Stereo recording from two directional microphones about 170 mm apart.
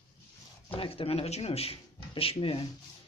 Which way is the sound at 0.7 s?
35° left (ahead or behind).